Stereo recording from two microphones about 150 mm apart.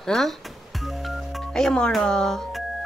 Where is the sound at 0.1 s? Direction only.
Centre (ahead or behind).